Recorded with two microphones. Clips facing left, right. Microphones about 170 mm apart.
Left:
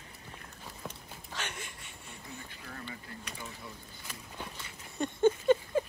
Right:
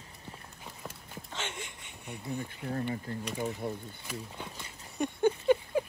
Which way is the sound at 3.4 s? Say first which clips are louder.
Right 12 dB; 55° right (ahead or behind).